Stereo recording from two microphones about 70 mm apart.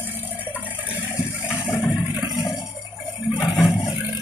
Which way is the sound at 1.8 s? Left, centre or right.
Centre.